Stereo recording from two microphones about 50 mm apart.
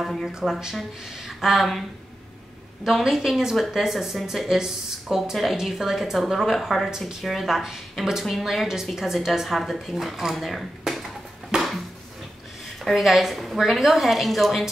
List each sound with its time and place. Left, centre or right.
0.0 s speech: centre
0.3 s speech: centre
2.8 s a woman's voice: centre
10.8 s a sound: centre
11.5 s a sound: centre
12.9 s speech: centre